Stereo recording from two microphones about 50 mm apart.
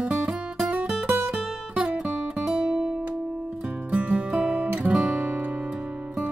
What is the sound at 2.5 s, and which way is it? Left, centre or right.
Guitar, centre.